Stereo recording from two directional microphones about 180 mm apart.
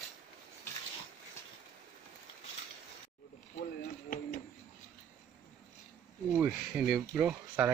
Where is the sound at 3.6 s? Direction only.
45° left (ahead or behind).